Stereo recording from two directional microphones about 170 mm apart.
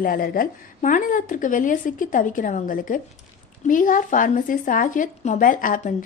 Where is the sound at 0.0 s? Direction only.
55° left (ahead or behind).